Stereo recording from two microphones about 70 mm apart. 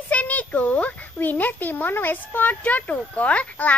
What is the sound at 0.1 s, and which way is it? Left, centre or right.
A child's voice, left.